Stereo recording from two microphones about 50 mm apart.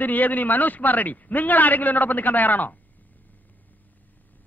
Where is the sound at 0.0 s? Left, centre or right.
Left.